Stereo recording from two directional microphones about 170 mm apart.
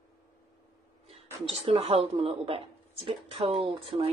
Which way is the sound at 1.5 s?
35° right (ahead or behind).